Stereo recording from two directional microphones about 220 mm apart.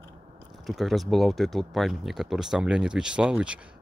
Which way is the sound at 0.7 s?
Centre (ahead or behind).